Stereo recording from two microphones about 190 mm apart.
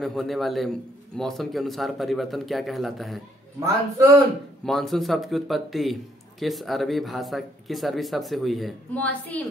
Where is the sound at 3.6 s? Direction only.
15° right (ahead or behind).